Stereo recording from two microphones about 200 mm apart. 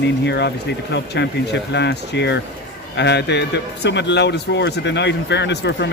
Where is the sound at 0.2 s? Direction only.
55° left (ahead or behind).